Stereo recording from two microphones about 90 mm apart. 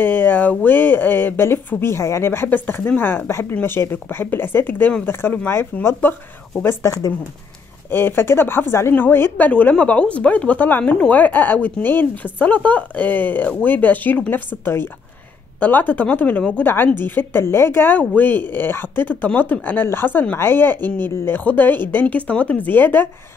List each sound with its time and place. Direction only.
0.0 s speech: 20° left (ahead or behind); by 7.2 s 40° left (ahead or behind)
7.9 s speech: 25° left (ahead or behind)